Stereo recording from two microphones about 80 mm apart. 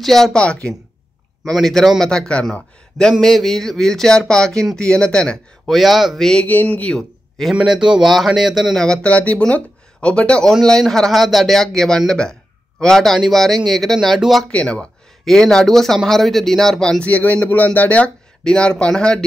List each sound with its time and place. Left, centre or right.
0.0 s speech: centre
1.4 s speech: centre
5.7 s speech: centre
6.4 s speech: left
7.0 s a sound: centre
7.6 s speech: centre
8.7 s speech: centre
14.5 s speech: centre
17.0 s speech: centre